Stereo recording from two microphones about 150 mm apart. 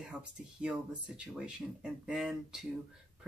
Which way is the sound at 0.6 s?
5° right (ahead or behind).